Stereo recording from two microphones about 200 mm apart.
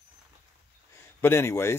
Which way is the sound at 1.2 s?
10° left (ahead or behind).